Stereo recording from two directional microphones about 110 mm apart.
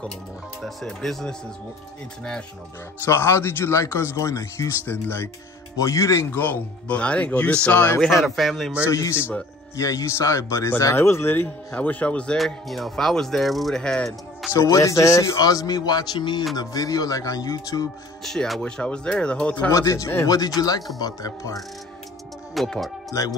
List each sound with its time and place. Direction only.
0.6 s speech: centre (ahead or behind)
3.1 s a man's voice: 25° left (ahead or behind)
6.3 s speech: 15° left (ahead or behind)
8.0 s speech: centre (ahead or behind)
8.8 s a man's voice: 25° left (ahead or behind); by 14.5 s 5° left (ahead or behind)
14.5 s speech: 30° left (ahead or behind)
18.2 s speech: 5° left (ahead or behind)
19.7 s speech: 30° left (ahead or behind)
22.5 s speech: centre (ahead or behind)